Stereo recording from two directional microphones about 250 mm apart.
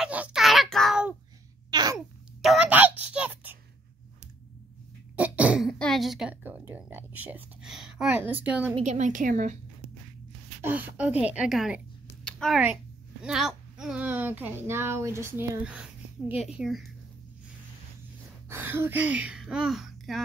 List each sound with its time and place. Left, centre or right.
0.0 s a sound: centre
1.7 s babbling: centre
2.0 s a sound: centre
5.1 s throat clearing: centre
8.7 s speech: right
10.6 s a woman's voice: centre
18.5 s speech: centre